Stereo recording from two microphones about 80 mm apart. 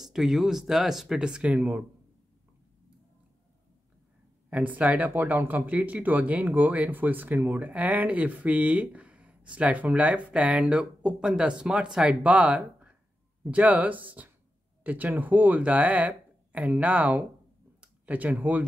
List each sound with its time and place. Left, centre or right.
0.0 s speech: centre
4.5 s speech: centre